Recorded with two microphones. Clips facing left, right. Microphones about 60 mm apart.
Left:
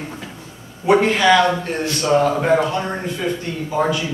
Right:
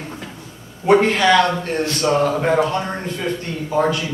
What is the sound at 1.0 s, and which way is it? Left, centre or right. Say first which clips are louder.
A man's voice: left 1 dB; centre.